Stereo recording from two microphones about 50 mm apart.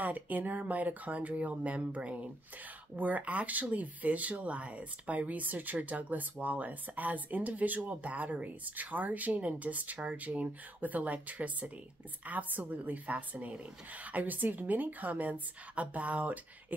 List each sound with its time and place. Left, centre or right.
0.0 s speech: right